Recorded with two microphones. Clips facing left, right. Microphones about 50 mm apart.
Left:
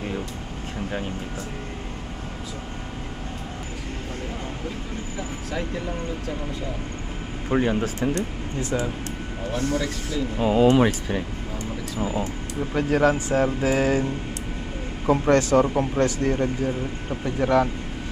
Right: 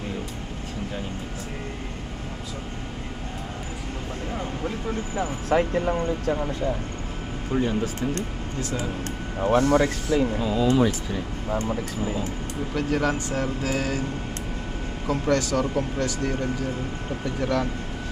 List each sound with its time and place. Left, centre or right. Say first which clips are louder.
5.1 s speech: right 9 dB; right
7.5 s speech: left 2 dB; left
8.5 s speech: left 4 dB; left
9.4 s speech: right 7 dB; right
10.4 s speech: left 9 dB; left
12.7 s speech: left 4 dB; centre
15.0 s speech: left 5 dB; left